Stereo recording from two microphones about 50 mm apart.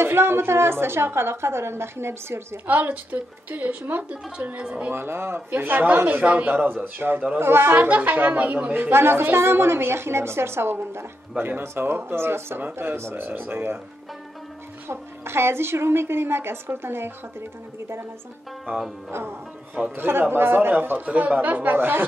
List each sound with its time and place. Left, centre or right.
0.0 s a woman's voice: right
2.6 s a woman's voice: right
4.6 s speech: right
4.9 s a woman's voice: right
5.5 s a woman's voice: right
7.9 s a woman's voice: right
8.9 s a woman's voice: right
11.3 s a woman's voice: right
11.6 s a woman's voice: right
13.1 s a woman's voice: right
14.9 s a woman's voice: right
18.7 s a woman's voice: right
21.7 s a woman's voice: right